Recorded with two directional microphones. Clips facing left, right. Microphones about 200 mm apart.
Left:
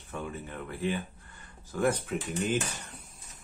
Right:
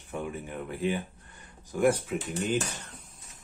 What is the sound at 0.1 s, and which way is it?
Speech, 15° right (ahead or behind).